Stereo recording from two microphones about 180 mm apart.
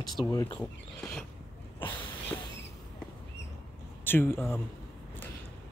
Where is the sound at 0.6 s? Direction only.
10° left (ahead or behind).